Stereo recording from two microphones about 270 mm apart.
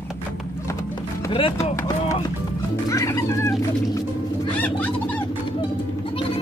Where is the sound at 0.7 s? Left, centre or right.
Centre.